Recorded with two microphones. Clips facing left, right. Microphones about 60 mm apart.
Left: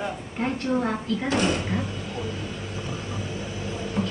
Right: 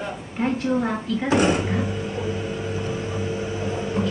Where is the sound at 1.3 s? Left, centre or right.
Centre.